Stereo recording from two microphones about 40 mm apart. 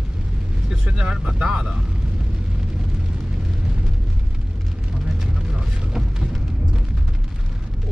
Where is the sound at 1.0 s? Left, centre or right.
Right.